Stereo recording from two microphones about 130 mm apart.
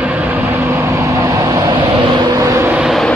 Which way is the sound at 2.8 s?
Centre (ahead or behind).